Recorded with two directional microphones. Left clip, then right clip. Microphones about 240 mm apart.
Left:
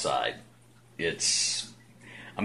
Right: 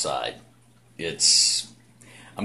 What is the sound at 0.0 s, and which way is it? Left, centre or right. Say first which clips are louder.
Speech: right 1 dB; centre.